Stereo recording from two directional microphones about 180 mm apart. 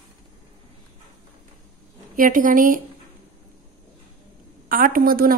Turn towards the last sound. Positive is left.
turn(degrees=-55)  # may be behind; listen again after turning